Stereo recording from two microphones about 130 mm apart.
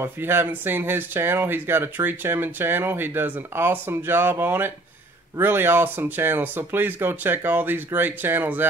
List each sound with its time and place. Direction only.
0.0 s speech: 15° right (ahead or behind)